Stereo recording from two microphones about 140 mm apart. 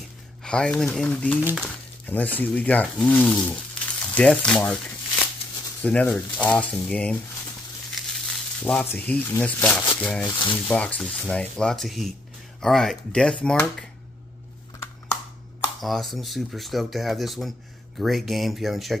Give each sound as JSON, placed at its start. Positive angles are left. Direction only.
{"t": 0.4, "sound": "speech", "side_deg": 5}
{"t": 8.3, "sound": "speech", "side_deg": 5}
{"t": 10.2, "sound": "speech", "side_deg": 35}
{"t": 10.7, "sound": "speech", "side_deg": 10}
{"t": 15.8, "sound": "speech", "side_deg": 0}